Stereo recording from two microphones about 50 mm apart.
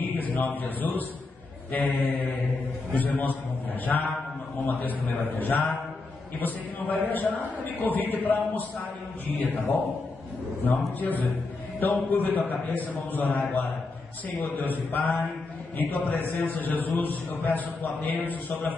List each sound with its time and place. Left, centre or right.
0.0 s a man's voice: left
7.1 s a man's voice: left